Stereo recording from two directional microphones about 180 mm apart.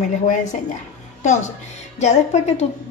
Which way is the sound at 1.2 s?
40° left (ahead or behind).